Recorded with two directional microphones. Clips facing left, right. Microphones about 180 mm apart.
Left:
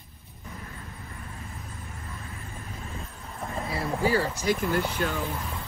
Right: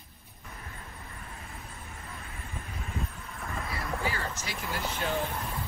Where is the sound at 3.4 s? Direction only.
30° left (ahead or behind).